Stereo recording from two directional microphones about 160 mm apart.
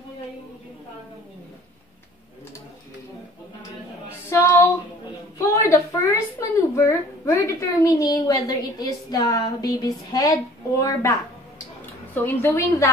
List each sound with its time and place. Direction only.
4.3 s female singing: 15° left (ahead or behind)
5.4 s a sound: 15° left (ahead or behind)
6.7 s a woman's voice: 15° left (ahead or behind)